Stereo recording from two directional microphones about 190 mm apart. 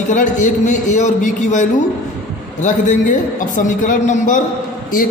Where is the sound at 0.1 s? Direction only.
40° left (ahead or behind).